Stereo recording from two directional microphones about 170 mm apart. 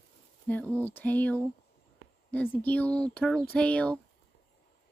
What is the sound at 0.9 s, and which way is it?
Speech, 10° left (ahead or behind).